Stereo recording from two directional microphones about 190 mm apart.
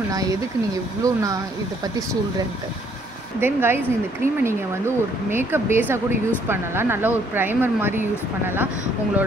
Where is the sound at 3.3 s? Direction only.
10° right (ahead or behind).